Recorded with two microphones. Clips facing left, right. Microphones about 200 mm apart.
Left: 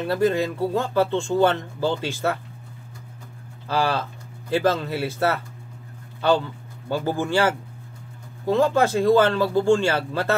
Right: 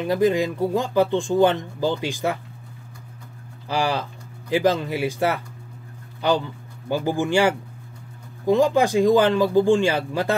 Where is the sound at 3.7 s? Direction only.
15° right (ahead or behind).